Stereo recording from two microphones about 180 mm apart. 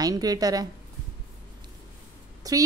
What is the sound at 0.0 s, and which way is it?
Speech, 20° right (ahead or behind).